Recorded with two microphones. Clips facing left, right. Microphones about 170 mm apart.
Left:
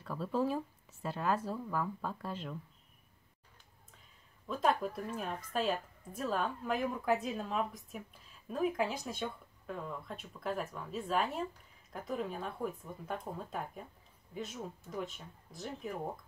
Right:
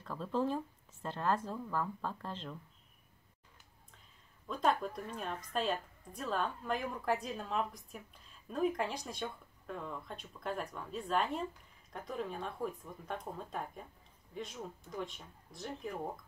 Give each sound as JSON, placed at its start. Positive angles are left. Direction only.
{"t": 0.0, "sound": "speech", "side_deg": 5}
{"t": 4.5, "sound": "a woman's voice", "side_deg": 5}